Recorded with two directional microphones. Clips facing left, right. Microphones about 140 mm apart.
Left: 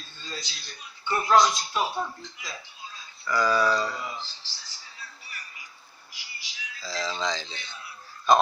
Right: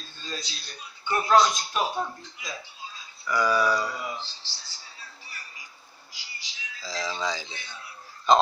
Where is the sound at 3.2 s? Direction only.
10° right (ahead or behind).